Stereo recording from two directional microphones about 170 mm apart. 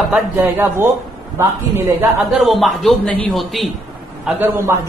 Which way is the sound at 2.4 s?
Centre (ahead or behind).